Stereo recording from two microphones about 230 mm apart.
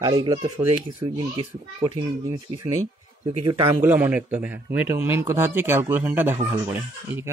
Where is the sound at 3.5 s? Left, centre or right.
Right.